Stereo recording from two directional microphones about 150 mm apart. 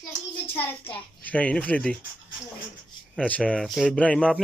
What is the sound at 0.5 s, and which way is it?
A child's voice, 15° left (ahead or behind).